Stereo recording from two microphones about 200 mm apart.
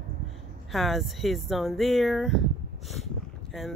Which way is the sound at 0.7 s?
Centre (ahead or behind).